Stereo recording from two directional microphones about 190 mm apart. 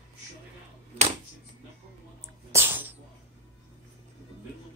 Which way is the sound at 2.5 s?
10° right (ahead or behind).